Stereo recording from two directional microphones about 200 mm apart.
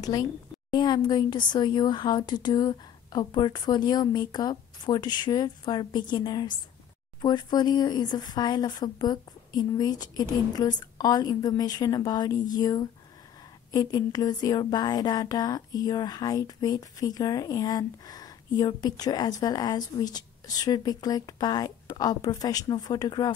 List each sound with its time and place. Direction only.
0.0 s speech: 20° left (ahead or behind)